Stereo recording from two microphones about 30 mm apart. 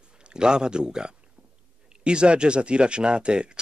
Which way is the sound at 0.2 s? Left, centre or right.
Right.